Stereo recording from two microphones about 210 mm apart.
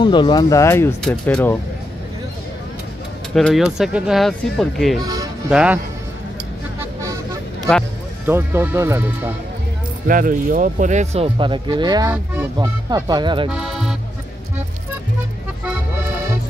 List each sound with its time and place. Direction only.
0.0 s speech: 20° left (ahead or behind)
3.3 s speech: centre (ahead or behind)
5.0 s music: 15° right (ahead or behind)
5.5 s speech: 5° right (ahead or behind)
8.3 s speech: 10° right (ahead or behind)
10.0 s speech: 40° right (ahead or behind); by 13.5 s 20° right (ahead or behind)
13.5 s speech: centre (ahead or behind)